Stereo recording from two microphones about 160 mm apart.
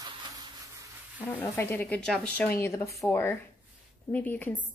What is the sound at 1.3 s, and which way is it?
Speech, 10° left (ahead or behind).